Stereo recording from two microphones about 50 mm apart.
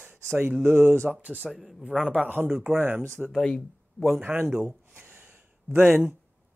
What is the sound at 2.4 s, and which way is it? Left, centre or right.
Speech, right.